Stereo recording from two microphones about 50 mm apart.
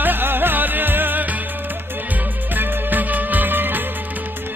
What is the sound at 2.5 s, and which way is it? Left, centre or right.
Music, right.